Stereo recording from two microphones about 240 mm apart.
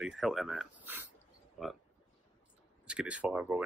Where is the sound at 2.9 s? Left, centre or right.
Centre.